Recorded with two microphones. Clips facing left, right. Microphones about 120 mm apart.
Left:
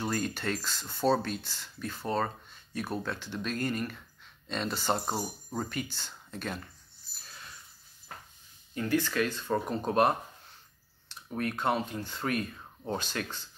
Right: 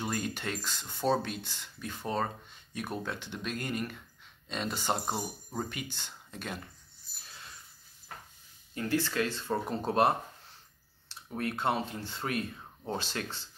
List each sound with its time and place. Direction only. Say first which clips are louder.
0.0 s speech: left 2 dB; 10° right (ahead or behind)
5.1 s speech: left 1 dB; centre (ahead or behind)
5.9 s speech: left 1 dB; 20° right (ahead or behind)
8.7 s speech: left 2 dB; 30° right (ahead or behind)